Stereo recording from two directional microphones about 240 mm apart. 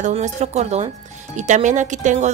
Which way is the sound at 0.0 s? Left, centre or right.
Right.